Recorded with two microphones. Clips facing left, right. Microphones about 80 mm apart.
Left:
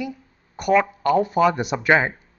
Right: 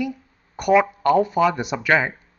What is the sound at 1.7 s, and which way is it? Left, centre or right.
Speech, centre.